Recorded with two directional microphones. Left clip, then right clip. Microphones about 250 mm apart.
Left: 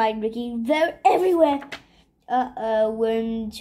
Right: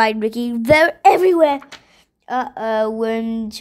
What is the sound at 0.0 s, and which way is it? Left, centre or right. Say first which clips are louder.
Speech: right 6 dB; right.